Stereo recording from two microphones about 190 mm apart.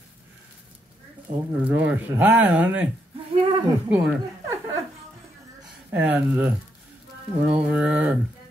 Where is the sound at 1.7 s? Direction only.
10° right (ahead or behind).